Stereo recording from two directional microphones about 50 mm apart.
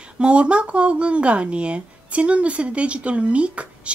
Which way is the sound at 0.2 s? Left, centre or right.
Right.